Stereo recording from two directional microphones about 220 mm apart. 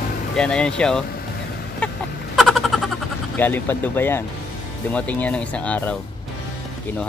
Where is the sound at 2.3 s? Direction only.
Centre (ahead or behind).